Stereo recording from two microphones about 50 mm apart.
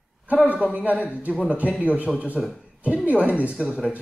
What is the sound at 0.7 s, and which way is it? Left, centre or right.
A man's voice, right.